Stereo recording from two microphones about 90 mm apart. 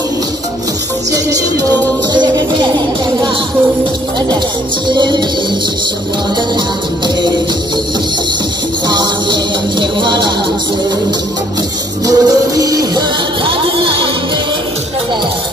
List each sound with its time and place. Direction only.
4.9 s music: 60° right (ahead or behind)
8.8 s music: 55° right (ahead or behind)
12.1 s music: 45° right (ahead or behind)
13.5 s music: 75° right (ahead or behind)